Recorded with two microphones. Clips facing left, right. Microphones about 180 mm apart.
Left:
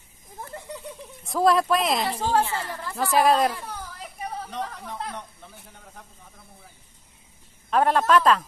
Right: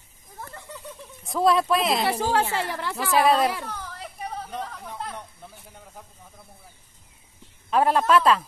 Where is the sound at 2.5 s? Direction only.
75° right (ahead or behind).